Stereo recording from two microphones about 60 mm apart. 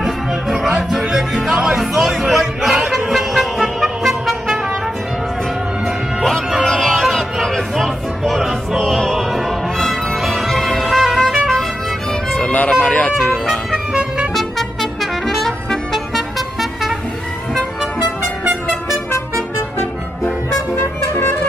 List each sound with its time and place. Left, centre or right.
0.0 s music: centre
3.1 s music: centre
6.6 s music: centre
12.4 s music: left
13.7 s music: centre
14.3 s trumpet: centre
20.7 s music: left